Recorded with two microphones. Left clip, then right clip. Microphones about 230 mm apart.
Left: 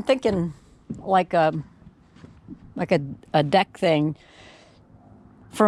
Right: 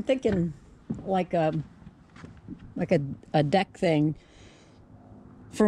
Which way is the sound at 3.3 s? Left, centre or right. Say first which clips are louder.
Left 5 dB; centre.